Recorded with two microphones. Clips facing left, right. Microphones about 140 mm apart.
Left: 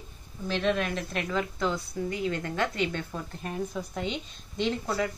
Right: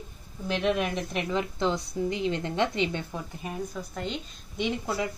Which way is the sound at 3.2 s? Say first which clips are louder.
Left 1 dB; 5° right (ahead or behind).